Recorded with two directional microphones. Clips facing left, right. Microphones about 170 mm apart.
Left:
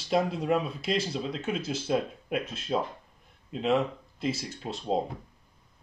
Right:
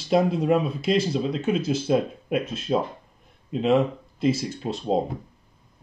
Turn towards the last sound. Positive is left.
turn(degrees=-35)  # may be behind; listen again after turning